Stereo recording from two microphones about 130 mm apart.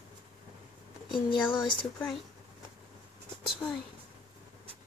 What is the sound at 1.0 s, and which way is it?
Speech, centre (ahead or behind).